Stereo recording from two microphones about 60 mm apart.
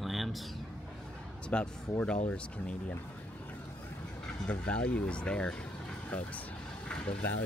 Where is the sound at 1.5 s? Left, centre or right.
Centre.